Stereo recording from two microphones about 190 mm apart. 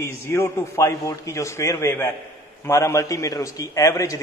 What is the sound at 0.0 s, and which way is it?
A man's voice, 15° left (ahead or behind).